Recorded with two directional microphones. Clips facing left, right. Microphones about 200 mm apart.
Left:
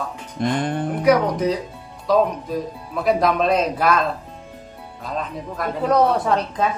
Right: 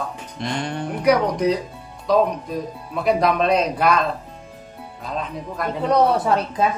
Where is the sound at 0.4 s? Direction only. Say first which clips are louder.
Left 5 dB; 50° left (ahead or behind).